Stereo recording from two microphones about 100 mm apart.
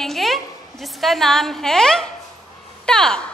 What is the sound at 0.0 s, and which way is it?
A woman's voice, centre (ahead or behind).